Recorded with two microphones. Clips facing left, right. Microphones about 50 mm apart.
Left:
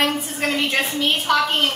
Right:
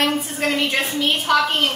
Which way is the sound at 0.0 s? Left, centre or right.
Centre.